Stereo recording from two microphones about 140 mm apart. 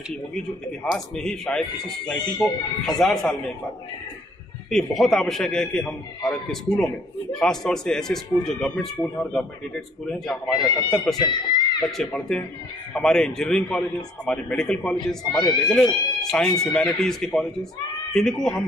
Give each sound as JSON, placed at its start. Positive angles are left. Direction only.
{"t": 0.8, "sound": "a man's voice", "side_deg": 5}
{"t": 4.6, "sound": "a man's voice", "side_deg": 5}
{"t": 11.1, "sound": "speech", "side_deg": 30}
{"t": 12.0, "sound": "a man's voice", "side_deg": 5}